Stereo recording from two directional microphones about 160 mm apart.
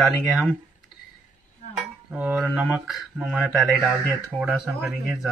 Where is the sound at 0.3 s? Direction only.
Centre (ahead or behind).